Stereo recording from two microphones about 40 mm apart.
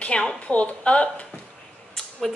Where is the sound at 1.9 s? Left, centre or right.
Centre.